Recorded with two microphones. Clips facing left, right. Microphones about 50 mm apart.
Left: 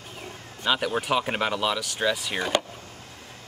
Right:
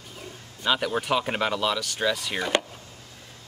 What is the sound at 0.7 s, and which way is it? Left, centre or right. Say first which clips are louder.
Speech: even; centre.